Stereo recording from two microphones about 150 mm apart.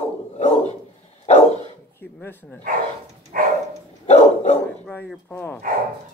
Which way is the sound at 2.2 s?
10° left (ahead or behind).